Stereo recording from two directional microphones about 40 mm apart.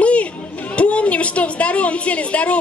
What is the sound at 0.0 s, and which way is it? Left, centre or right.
Music, left.